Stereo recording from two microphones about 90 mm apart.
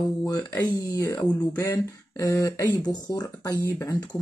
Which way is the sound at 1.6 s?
40° left (ahead or behind).